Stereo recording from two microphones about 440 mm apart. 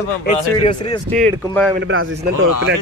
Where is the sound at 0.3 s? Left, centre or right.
Centre.